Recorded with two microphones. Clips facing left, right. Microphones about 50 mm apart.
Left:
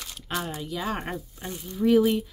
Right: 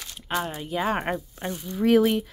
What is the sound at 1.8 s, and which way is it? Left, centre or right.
Speech, right.